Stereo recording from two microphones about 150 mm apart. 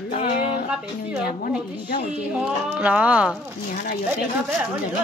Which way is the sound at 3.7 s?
80° left.